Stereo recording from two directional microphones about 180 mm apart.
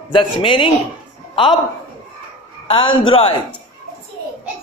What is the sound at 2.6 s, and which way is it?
Speech, 30° left (ahead or behind).